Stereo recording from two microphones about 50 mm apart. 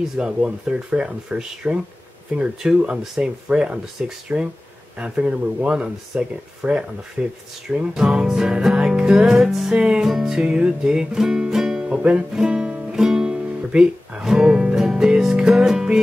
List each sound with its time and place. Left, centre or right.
0.2 s speech: centre
4.3 s speech: right
4.9 s speech: right
7.2 s speech: right
7.7 s music: centre
9.7 s speech: centre
10.0 s music: centre
12.0 s speech: right
12.9 s music: centre